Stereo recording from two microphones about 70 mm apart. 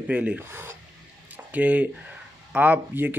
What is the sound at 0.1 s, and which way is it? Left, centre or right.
Speech, right.